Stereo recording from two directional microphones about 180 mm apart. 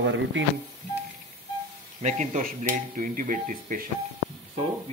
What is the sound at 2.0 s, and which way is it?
Speech, 40° right (ahead or behind).